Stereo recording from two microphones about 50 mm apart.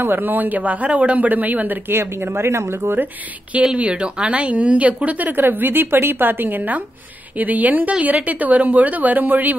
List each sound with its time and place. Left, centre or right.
0.0 s a woman's voice: right
1.9 s speech: right
3.7 s a woman's voice: right